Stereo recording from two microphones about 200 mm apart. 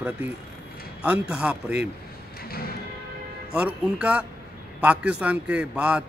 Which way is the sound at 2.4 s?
50° left (ahead or behind).